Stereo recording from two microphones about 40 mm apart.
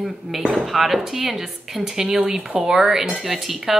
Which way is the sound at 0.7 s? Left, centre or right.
Centre.